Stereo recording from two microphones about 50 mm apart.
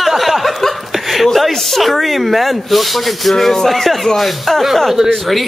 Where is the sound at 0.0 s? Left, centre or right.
Centre.